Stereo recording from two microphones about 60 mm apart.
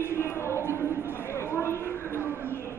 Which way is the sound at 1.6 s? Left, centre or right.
Left.